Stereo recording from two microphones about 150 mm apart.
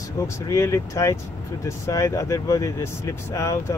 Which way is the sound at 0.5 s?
20° left (ahead or behind).